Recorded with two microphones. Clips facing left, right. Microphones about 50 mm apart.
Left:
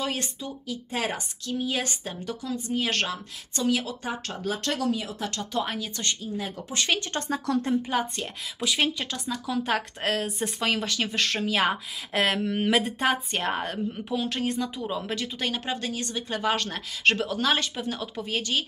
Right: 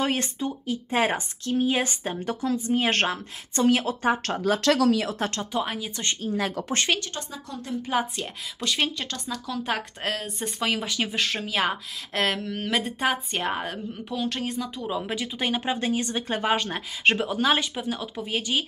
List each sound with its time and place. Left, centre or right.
0.0 s speech: right
4.5 s speech: right
5.5 s a woman's voice: centre
6.3 s speech: right
7.2 s speech: left
8.2 s speech: centre
12.8 s a woman's voice: centre